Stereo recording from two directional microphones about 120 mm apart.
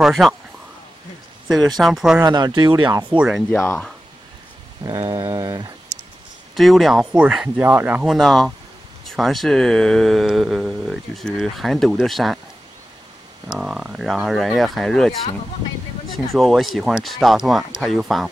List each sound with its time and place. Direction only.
0.0 s speech: centre (ahead or behind)
1.8 s speech: centre (ahead or behind)
2.2 s speech: 35° right (ahead or behind)
3.1 s speech: 10° right (ahead or behind)
4.8 s a sound: 30° right (ahead or behind)
6.5 s speech: centre (ahead or behind)
8.1 s speech: centre (ahead or behind)
13.5 s speech: 5° right (ahead or behind)
16.3 s speech: centre (ahead or behind)